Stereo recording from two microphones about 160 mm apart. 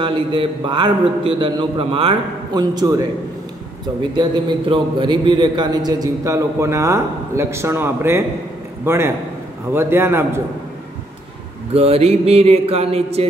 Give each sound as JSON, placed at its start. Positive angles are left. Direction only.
{"t": 0.0, "sound": "a man's voice", "side_deg": -30}
{"t": 4.2, "sound": "a man's voice", "side_deg": -30}
{"t": 11.7, "sound": "a man's voice", "side_deg": -40}